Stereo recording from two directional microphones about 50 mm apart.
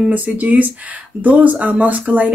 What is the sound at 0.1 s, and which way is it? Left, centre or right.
Speech, right.